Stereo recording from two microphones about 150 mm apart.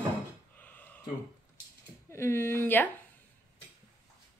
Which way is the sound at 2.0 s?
15° left (ahead or behind).